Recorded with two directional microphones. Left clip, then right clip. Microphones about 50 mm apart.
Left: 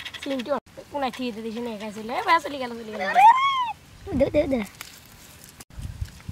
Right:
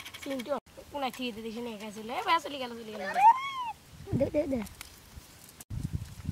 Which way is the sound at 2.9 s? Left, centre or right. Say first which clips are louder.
Left 7 dB; left.